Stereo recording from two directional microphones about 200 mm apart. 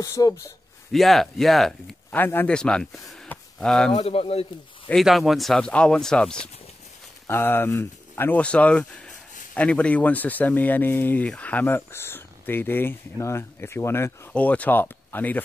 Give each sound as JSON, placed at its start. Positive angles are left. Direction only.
{"t": 0.0, "sound": "speech", "side_deg": 15}
{"t": 0.9, "sound": "speech", "side_deg": 0}
{"t": 3.9, "sound": "speech", "side_deg": 30}
{"t": 4.8, "sound": "speech", "side_deg": 0}